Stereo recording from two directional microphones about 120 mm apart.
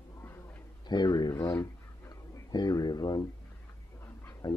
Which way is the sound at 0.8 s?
35° left (ahead or behind).